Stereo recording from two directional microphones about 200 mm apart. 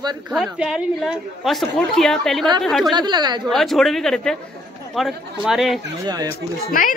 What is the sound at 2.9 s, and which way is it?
Speech, 20° right (ahead or behind).